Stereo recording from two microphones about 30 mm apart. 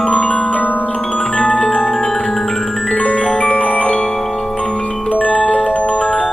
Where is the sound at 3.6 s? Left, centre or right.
Left.